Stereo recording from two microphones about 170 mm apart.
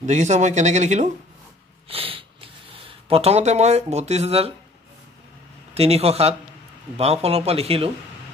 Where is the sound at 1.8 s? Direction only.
35° right (ahead or behind).